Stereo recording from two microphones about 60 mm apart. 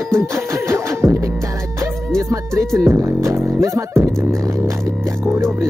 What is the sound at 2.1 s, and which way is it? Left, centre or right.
Music, right.